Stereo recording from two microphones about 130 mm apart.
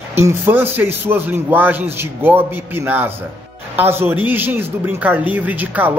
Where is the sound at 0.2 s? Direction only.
20° right (ahead or behind).